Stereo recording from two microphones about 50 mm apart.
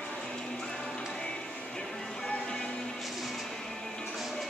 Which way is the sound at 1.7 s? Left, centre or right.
Centre.